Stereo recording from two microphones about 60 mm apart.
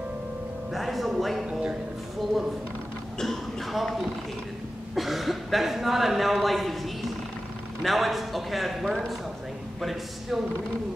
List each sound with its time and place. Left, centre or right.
0.7 s music: centre
1.5 s a man's voice: centre
3.2 s speech: centre